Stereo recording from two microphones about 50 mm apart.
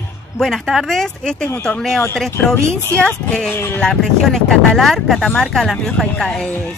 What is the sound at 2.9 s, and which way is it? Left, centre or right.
Speech, left.